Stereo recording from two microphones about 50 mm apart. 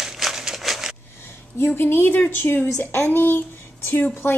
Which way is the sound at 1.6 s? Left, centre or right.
Left.